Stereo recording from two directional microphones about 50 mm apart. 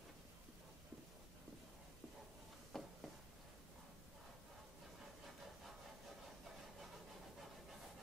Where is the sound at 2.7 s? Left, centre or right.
Centre.